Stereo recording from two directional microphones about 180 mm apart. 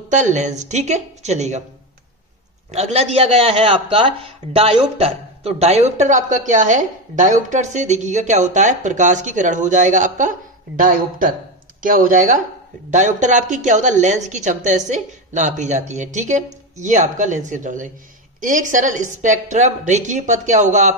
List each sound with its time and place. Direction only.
0.1 s a man's voice: 40° right (ahead or behind)
2.7 s a man's voice: 35° right (ahead or behind)